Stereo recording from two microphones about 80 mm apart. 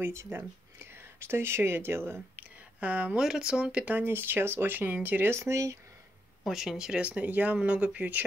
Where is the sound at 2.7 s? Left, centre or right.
Centre; by 5.7 s right.